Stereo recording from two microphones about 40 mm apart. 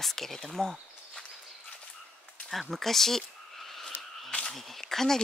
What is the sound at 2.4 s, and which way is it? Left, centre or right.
Speech, centre.